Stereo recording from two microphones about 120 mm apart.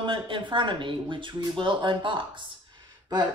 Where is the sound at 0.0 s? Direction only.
40° right (ahead or behind).